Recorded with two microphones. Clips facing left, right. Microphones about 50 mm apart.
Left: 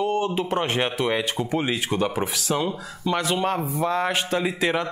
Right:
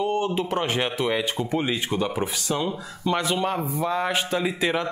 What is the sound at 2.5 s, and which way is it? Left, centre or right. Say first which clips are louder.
Speech: left 2 dB; left.